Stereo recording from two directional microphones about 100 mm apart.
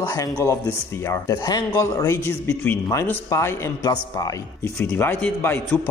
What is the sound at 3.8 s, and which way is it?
Speech, 40° left (ahead or behind).